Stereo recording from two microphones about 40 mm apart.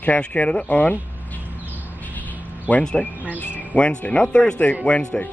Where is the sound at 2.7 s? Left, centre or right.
Left.